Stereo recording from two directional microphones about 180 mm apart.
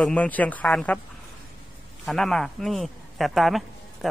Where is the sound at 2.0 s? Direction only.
Centre (ahead or behind).